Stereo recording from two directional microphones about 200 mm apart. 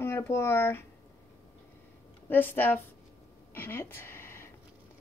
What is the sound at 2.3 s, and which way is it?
Speech, 10° left (ahead or behind).